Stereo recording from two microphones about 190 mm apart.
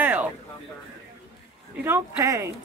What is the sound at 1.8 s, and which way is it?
Speech, 15° right (ahead or behind).